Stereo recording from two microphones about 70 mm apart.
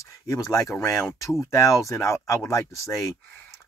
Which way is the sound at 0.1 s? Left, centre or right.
Left.